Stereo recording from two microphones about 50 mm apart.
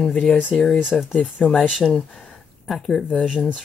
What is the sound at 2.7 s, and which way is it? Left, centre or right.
Speech, centre.